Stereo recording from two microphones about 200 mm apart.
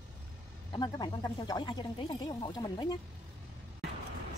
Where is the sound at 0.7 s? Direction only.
20° left (ahead or behind).